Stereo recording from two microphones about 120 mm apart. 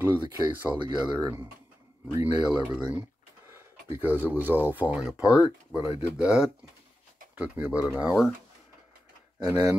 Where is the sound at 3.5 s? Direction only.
20° right (ahead or behind).